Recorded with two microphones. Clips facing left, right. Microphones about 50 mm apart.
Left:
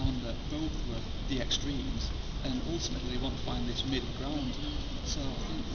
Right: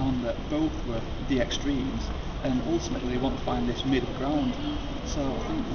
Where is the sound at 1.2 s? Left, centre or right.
Right.